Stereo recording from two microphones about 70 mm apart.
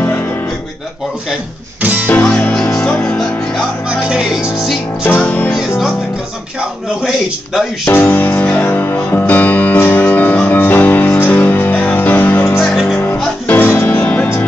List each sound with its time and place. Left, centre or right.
0.0 s music: left
1.8 s music: right
2.8 s music: left
4.1 s music: centre
5.2 s music: centre
7.8 s music: left